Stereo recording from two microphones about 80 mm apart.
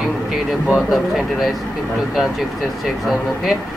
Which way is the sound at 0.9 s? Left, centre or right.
Centre.